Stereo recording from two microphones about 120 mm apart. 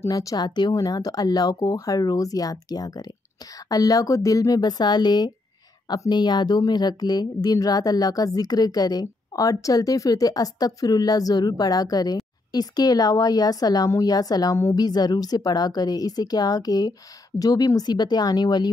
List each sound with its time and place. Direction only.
0.0 s speech: 30° left (ahead or behind)